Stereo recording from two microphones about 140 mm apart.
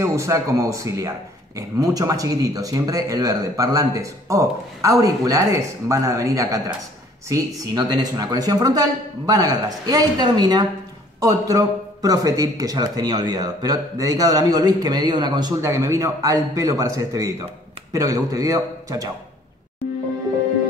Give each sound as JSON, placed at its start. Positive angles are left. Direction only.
{"t": 0.0, "sound": "a man's voice", "side_deg": -20}